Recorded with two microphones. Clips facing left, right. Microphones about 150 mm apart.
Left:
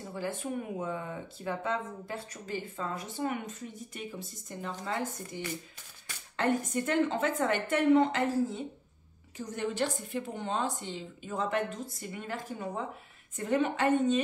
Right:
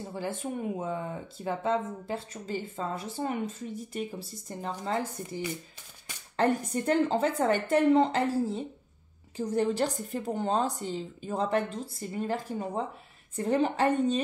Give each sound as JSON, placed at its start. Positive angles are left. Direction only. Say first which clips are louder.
{"t": 0.1, "sound": "a woman's voice", "louder": "even", "side_deg": -30}